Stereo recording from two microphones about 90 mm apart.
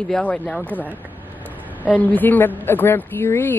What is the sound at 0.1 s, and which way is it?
Speech, 10° left (ahead or behind).